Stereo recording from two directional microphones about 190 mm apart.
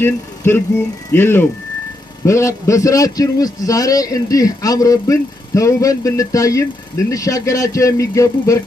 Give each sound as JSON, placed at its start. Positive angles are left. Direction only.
{"t": 0.0, "sound": "a man's voice", "side_deg": 10}